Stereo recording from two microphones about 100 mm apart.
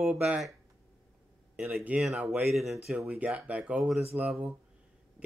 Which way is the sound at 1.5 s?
5° right (ahead or behind).